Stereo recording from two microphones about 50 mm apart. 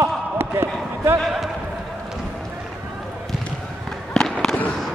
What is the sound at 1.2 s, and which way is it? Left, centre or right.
Speech, centre.